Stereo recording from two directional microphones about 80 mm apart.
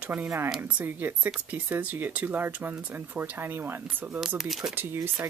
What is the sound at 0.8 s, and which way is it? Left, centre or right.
Speech, right.